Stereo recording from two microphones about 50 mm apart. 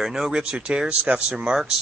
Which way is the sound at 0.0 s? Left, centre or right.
Centre.